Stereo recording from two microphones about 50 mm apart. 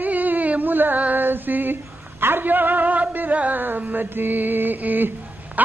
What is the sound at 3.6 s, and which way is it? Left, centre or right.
A woman's voice, right.